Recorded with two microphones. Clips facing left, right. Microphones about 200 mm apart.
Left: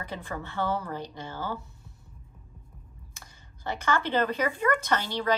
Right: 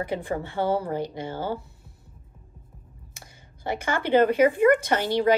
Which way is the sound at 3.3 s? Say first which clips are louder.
Right 5 dB; 10° right (ahead or behind).